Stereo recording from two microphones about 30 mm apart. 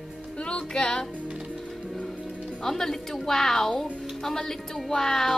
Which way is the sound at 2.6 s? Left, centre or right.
Centre.